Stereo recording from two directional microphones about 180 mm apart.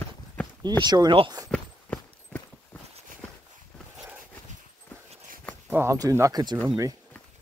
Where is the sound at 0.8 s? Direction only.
25° right (ahead or behind).